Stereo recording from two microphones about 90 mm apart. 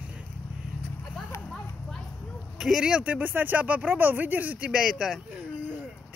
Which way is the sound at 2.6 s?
5° right (ahead or behind).